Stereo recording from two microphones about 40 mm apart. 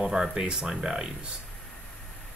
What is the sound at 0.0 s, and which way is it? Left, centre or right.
Speech, centre.